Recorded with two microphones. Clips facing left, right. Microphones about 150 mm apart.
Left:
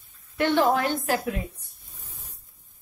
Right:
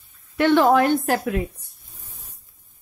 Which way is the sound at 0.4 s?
85° right.